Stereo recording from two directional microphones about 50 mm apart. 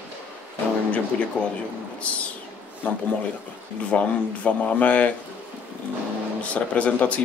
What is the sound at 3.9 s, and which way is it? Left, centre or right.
Speech, left.